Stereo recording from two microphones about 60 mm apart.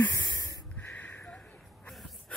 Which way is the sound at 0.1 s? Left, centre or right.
Left.